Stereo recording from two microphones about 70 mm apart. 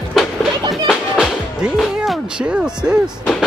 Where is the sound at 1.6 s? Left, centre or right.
Centre.